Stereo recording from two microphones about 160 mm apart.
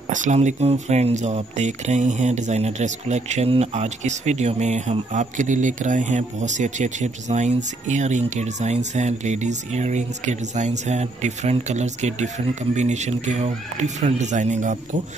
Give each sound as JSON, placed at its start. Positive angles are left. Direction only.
{"t": 0.1, "sound": "speech", "side_deg": -50}